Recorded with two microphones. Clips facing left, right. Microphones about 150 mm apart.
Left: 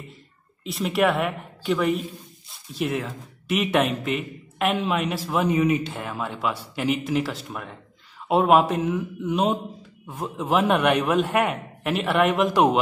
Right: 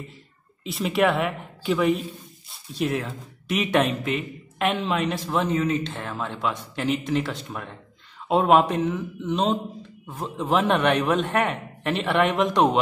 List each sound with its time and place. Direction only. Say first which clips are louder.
0.7 s speech: even; centre (ahead or behind)